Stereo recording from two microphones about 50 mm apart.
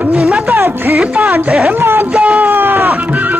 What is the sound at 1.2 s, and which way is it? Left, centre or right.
Speech, right.